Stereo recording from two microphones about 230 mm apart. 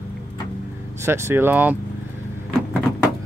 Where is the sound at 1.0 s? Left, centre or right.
Centre.